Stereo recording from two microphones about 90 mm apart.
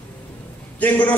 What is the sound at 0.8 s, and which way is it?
Speech, 20° left (ahead or behind).